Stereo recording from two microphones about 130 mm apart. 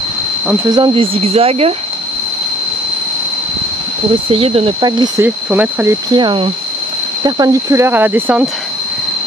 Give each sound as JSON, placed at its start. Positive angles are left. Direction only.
{"t": 0.7, "sound": "speech", "side_deg": -35}
{"t": 4.3, "sound": "speech", "side_deg": -50}
{"t": 5.2, "sound": "speech", "side_deg": -15}
{"t": 6.1, "sound": "speech", "side_deg": -40}